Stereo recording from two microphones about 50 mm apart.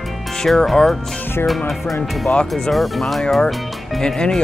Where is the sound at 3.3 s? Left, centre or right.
Centre.